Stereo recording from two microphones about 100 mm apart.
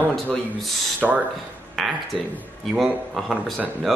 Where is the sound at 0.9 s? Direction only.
15° right (ahead or behind).